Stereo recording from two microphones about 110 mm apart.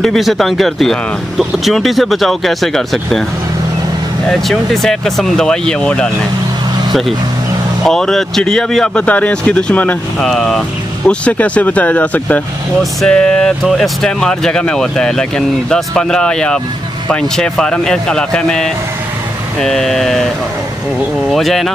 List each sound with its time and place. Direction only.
0.0 s speech: centre (ahead or behind)
4.3 s speech: 5° left (ahead or behind)
21.3 s speech: centre (ahead or behind)